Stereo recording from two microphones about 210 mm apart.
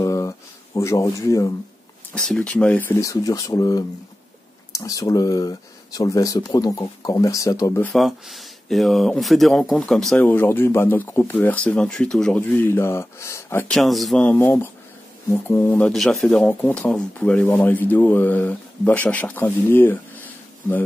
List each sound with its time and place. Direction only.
0.0 s a sound: 15° left (ahead or behind)
2.1 s speech: 5° left (ahead or behind)
7.9 s speech: centre (ahead or behind)